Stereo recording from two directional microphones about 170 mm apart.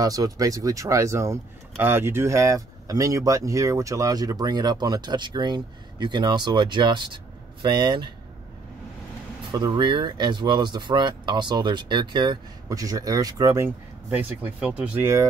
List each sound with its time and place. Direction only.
0.0 s speech: 20° right (ahead or behind)
9.5 s speech: 25° right (ahead or behind)